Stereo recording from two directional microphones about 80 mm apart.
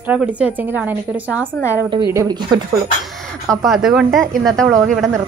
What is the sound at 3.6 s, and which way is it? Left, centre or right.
Speech, centre.